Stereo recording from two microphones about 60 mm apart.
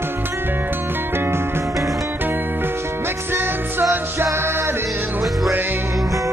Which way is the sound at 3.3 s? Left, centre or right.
Right.